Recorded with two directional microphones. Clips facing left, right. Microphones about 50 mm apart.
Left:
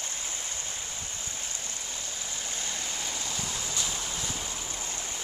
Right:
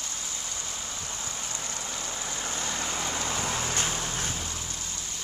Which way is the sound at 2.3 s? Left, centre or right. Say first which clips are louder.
Right 4 dB; right.